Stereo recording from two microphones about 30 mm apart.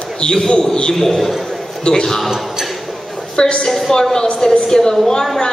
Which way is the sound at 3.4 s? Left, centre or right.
Left.